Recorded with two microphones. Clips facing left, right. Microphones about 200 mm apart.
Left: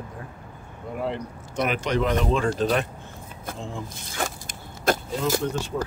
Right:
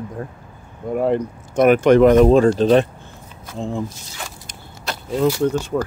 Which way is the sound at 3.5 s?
55° left (ahead or behind).